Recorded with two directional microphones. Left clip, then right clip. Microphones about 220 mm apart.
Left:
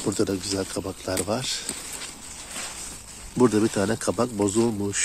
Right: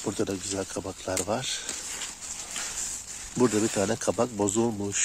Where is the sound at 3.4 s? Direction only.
Centre (ahead or behind).